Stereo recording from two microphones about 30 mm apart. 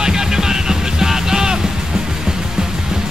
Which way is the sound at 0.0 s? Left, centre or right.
Right.